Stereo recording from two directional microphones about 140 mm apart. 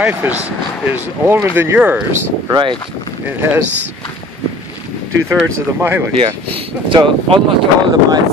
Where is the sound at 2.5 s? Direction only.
35° right (ahead or behind).